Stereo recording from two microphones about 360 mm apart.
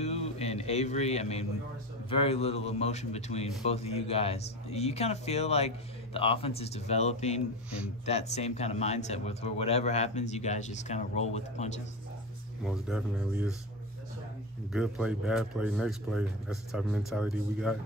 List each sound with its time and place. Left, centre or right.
0.0 s a sound: centre
2.0 s speech: centre
12.6 s speech: centre
14.7 s speech: centre